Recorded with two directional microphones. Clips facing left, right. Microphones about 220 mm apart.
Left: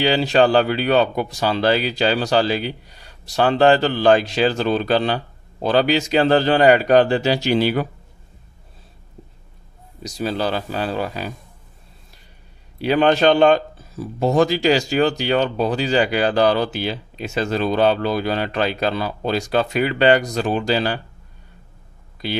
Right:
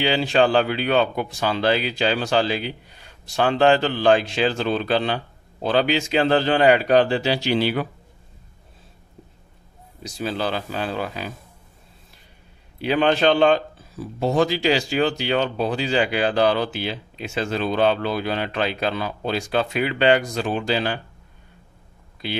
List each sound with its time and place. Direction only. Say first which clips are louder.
0.0 s speech: left 3 dB; 40° left (ahead or behind)
10.0 s speech: left 3 dB; 40° left (ahead or behind)
12.7 s speech: left 3 dB; 40° left (ahead or behind)